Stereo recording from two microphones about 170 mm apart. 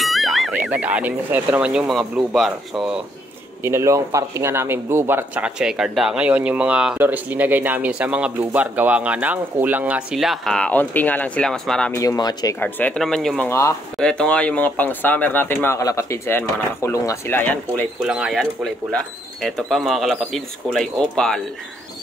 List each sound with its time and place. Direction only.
0.0 s speech: centre (ahead or behind)
3.6 s speech: 15° right (ahead or behind); by 11.9 s 5° left (ahead or behind)
11.9 s speech: 20° left (ahead or behind)
12.5 s speech: 10° left (ahead or behind)
13.5 s speech: 15° left (ahead or behind)
13.9 s speech: 5° left (ahead or behind)
18.0 s speech: centre (ahead or behind)